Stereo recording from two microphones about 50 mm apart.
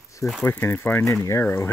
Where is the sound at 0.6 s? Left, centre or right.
Left.